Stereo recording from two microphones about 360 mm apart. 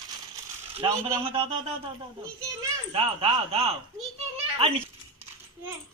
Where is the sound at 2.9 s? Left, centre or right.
Centre.